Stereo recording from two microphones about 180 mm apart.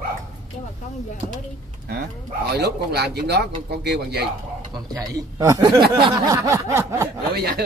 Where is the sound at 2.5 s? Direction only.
65° right (ahead or behind).